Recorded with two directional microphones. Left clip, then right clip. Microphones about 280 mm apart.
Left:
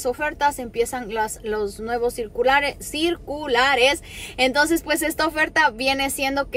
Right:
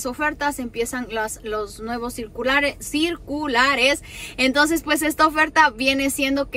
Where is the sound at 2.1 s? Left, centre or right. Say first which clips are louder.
Left 1 dB; centre.